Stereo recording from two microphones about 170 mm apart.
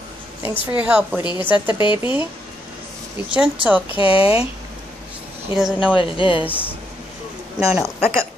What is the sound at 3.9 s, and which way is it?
Speech, 30° left (ahead or behind).